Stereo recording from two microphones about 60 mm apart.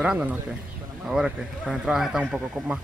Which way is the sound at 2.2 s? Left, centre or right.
Right.